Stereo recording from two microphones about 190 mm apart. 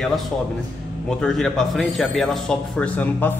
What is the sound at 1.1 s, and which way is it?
A man's voice, 5° left (ahead or behind).